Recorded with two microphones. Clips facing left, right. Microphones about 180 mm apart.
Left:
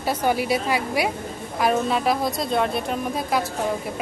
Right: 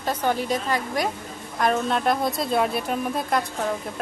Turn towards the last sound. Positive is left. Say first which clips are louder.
# even
turn(degrees=0)  # may be behind; listen again after turning